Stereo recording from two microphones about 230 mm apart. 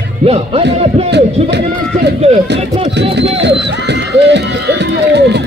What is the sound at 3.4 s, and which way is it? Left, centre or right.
Crowd, right.